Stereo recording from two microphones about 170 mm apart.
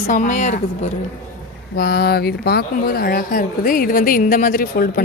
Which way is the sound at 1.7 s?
65° left (ahead or behind).